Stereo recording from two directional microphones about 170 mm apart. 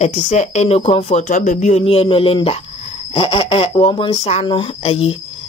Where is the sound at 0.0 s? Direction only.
40° left (ahead or behind).